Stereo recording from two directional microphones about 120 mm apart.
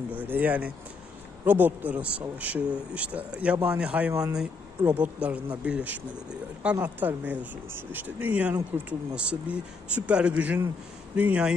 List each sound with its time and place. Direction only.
0.2 s a man's voice: 15° right (ahead or behind)
4.1 s speech: 30° right (ahead or behind)
4.4 s a man's voice: 10° right (ahead or behind)